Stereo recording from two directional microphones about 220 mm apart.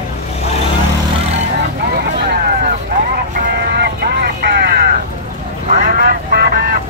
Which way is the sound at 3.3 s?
45° right (ahead or behind).